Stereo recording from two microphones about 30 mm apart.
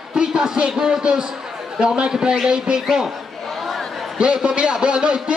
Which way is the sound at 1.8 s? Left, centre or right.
Right.